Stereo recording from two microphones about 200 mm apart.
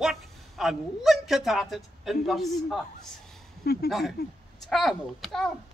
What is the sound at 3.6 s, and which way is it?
Speech, 50° left (ahead or behind).